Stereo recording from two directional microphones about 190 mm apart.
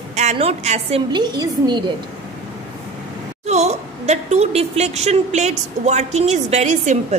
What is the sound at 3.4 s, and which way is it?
A woman's voice, 35° right (ahead or behind).